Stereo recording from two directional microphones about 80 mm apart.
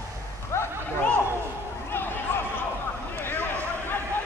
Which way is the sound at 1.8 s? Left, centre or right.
Left.